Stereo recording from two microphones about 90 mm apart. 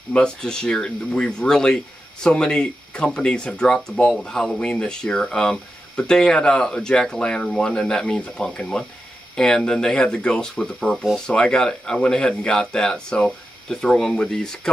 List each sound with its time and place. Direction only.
0.1 s speech: 10° left (ahead or behind)